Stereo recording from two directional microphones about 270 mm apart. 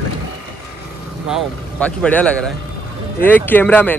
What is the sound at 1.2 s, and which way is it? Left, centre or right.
Speech, centre.